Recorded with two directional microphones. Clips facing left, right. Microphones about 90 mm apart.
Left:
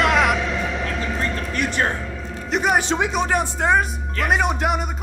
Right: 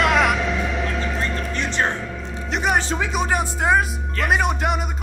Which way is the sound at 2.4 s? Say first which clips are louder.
Left 2 dB; centre (ahead or behind).